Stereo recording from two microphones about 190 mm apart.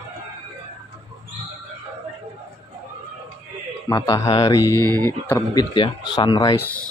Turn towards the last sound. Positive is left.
turn(degrees=20)  # may be behind; listen again after turning